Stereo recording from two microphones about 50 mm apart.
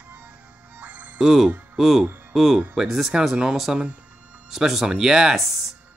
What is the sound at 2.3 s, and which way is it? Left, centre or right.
Speech, centre.